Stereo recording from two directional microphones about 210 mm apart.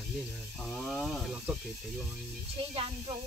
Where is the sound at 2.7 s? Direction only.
30° right (ahead or behind).